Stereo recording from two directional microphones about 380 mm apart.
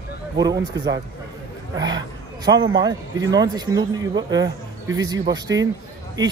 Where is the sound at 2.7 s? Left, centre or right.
Centre.